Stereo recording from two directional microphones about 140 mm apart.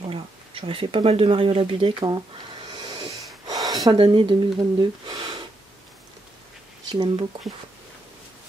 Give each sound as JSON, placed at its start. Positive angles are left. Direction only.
{"t": 0.0, "sound": "speech", "side_deg": -40}
{"t": 2.7, "sound": "snort", "side_deg": -35}
{"t": 3.4, "sound": "a sound", "side_deg": -25}
{"t": 4.0, "sound": "speech", "side_deg": -40}
{"t": 6.9, "sound": "speech", "side_deg": -35}